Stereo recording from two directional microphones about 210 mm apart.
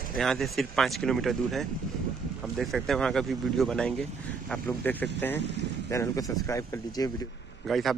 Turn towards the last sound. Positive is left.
turn(degrees=0)  # may be behind; listen again after turning